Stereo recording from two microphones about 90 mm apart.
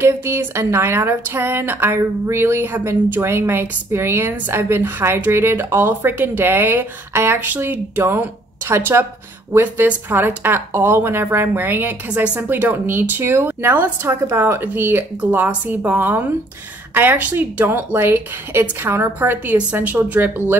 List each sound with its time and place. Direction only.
0.0 s speech: 25° right (ahead or behind)